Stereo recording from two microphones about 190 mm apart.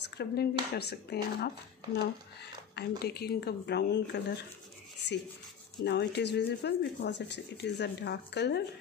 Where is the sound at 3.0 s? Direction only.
55° left (ahead or behind).